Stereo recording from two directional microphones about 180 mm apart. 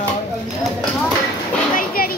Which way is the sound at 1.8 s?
55° left (ahead or behind).